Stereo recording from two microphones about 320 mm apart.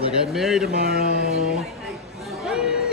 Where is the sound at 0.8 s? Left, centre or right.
Right.